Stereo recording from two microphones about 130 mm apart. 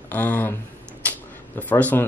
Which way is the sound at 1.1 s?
15° left (ahead or behind).